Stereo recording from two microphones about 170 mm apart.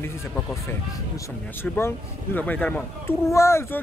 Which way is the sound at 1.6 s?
15° left (ahead or behind).